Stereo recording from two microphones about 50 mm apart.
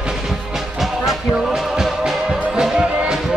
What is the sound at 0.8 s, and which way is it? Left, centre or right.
Music, centre.